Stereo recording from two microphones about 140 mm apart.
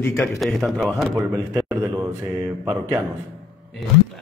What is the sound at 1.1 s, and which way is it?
A man's voice, 25° right (ahead or behind).